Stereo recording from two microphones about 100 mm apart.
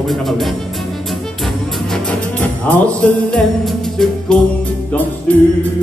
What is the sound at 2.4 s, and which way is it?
Music, 15° left (ahead or behind).